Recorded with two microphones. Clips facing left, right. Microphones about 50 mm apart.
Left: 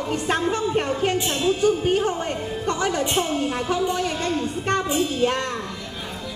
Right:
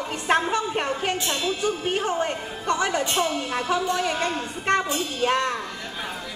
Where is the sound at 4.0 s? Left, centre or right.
Right.